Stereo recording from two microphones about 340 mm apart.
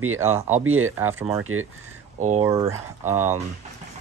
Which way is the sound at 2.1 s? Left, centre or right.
Right.